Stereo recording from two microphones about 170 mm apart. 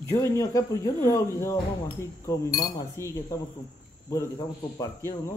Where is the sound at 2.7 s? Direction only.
20° left (ahead or behind).